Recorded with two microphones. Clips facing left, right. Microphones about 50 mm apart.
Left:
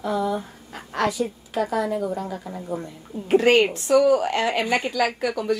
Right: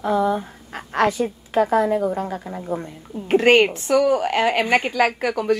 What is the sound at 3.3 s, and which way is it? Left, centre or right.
Speech, centre.